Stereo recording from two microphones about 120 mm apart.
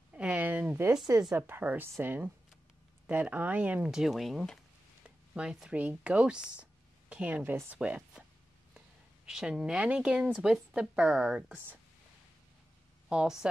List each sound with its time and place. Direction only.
0.1 s a sound: 10° right (ahead or behind)
1.3 s speech: 15° right (ahead or behind)
6.5 s writing: 10° right (ahead or behind)
7.8 s speech: 10° right (ahead or behind)
13.1 s speech: 5° right (ahead or behind)